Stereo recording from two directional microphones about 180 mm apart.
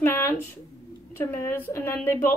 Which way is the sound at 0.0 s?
10° left (ahead or behind).